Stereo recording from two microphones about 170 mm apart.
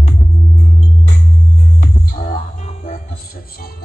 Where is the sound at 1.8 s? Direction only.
55° left (ahead or behind).